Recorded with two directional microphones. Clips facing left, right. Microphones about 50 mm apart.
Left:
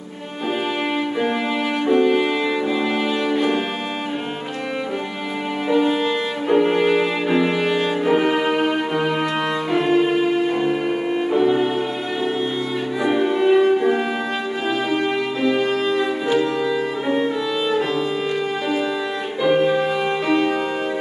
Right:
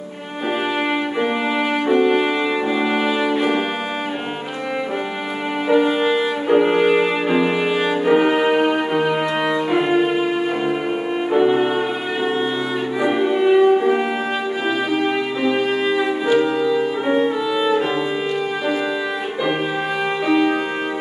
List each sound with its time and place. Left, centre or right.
1.9 s music: centre
5.7 s music: centre
11.3 s music: centre
13.0 s music: centre
15.4 s music: centre
19.4 s music: centre